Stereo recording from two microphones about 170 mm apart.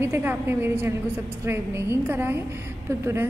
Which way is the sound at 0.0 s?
15° right (ahead or behind).